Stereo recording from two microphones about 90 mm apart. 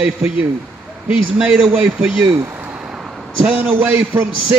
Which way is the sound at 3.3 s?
15° right (ahead or behind).